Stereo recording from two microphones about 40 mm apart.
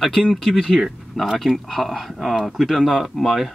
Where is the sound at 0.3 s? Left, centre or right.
Centre.